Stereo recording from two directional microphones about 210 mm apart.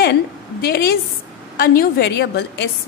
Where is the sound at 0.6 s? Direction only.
50° left (ahead or behind).